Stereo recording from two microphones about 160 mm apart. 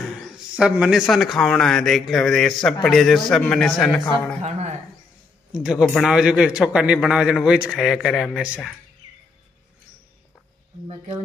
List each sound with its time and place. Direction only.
0.6 s a man's voice: 5° right (ahead or behind)
4.4 s speech: 45° right (ahead or behind)
5.5 s a man's voice: 5° right (ahead or behind)